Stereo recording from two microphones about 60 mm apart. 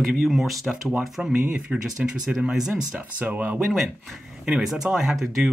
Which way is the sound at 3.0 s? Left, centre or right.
Right.